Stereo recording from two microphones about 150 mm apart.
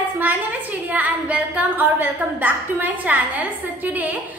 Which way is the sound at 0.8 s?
10° right (ahead or behind).